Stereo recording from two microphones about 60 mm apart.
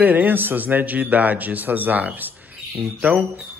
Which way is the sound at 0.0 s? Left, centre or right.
Right.